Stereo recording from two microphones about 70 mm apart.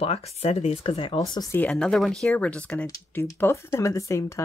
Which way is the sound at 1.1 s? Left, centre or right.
Left.